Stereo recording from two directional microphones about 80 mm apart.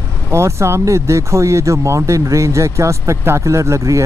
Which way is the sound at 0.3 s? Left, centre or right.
Right.